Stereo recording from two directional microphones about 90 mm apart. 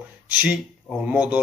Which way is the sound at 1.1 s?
15° right (ahead or behind).